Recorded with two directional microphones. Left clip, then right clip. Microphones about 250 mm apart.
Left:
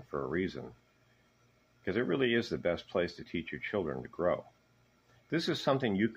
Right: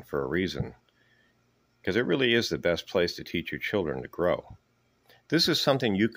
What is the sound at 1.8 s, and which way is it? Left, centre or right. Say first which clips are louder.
Speech: right 6 dB; right.